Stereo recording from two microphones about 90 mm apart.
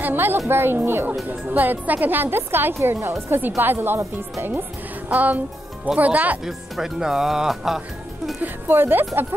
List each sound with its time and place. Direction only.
0.0 s a sound: 25° right (ahead or behind)
0.5 s a woman's voice: 25° right (ahead or behind)
6.4 s speech: 5° right (ahead or behind)
8.4 s a woman's voice: 25° right (ahead or behind)